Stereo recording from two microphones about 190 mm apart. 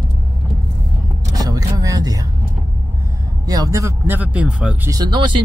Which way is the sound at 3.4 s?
20° right (ahead or behind).